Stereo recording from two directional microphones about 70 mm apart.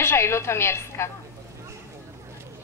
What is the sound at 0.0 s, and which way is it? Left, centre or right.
A woman's voice, left.